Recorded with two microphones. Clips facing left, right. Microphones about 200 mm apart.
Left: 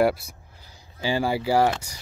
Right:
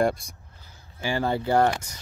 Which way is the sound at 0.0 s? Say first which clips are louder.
Left 2 dB; 5° left (ahead or behind).